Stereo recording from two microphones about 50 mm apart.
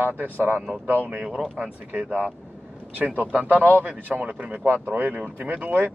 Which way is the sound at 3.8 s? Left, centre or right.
Right.